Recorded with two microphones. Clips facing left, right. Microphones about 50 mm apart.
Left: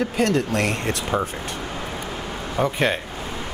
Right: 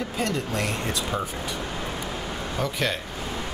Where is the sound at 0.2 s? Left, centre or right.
Left.